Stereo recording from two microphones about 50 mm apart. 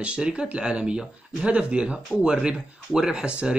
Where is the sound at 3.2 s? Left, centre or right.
Right.